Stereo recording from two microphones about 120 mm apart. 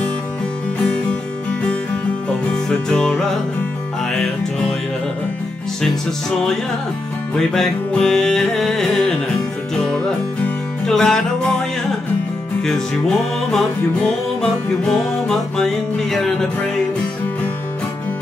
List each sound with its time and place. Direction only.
2.4 s music: 5° left (ahead or behind)
7.3 s music: 5° left (ahead or behind)
12.6 s music: 5° left (ahead or behind)